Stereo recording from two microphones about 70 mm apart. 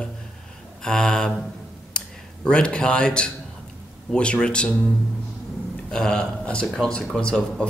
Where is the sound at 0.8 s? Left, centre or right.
Centre.